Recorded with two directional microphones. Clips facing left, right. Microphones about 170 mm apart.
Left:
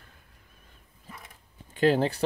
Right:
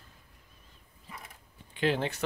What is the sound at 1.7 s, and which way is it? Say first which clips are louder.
Speech: left 6 dB; 40° left (ahead or behind).